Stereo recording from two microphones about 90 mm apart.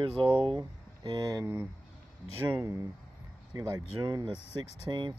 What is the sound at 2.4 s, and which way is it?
Speech, 25° right (ahead or behind).